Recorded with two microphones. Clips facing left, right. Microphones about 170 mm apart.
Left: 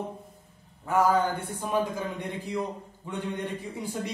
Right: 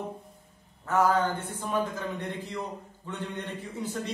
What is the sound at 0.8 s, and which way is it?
Speech, 10° left (ahead or behind).